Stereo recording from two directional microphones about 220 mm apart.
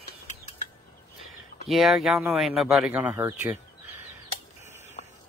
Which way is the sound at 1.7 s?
Centre (ahead or behind).